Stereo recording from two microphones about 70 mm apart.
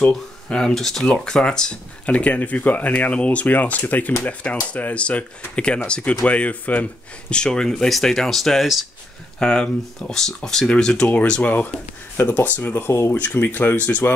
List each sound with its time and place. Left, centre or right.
0.0 s speech: centre